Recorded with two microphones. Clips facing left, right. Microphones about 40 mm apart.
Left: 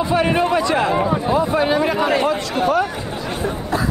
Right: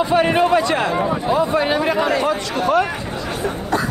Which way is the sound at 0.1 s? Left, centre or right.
Right.